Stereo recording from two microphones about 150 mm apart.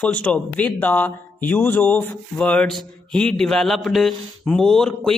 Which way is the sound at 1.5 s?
10° left (ahead or behind).